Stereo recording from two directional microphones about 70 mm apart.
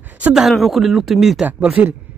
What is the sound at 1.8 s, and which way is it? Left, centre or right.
Speech, centre.